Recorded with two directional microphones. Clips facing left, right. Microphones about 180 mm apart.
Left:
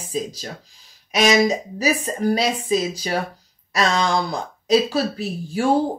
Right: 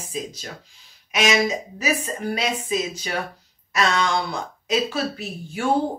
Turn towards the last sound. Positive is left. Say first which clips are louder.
# left 4 dB
turn(degrees=35)  # may be behind; listen again after turning